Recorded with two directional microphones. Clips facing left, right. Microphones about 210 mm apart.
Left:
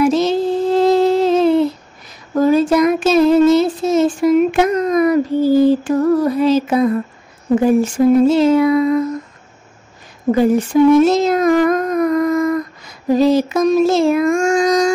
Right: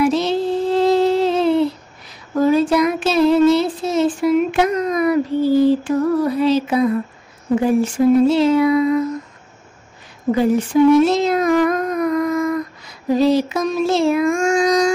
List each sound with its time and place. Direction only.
0.0 s music: 45° left (ahead or behind)
2.5 s child singing: 45° left (ahead or behind)
10.3 s speech: 45° left (ahead or behind)
13.2 s child singing: 45° left (ahead or behind)